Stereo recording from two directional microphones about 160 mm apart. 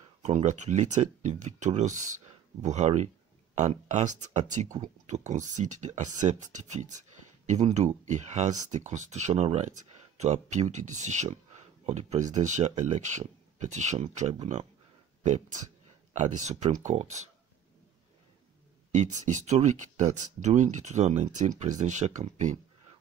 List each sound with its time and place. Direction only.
0.2 s speech: 45° right (ahead or behind)
18.9 s speech: 50° right (ahead or behind)